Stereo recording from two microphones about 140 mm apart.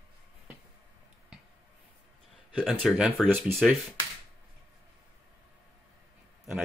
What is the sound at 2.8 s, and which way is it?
Speech, centre (ahead or behind).